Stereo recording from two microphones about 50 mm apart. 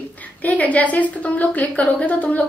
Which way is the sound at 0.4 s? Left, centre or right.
Left.